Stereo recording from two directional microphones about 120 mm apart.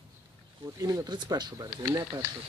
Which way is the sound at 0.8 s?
35° right (ahead or behind).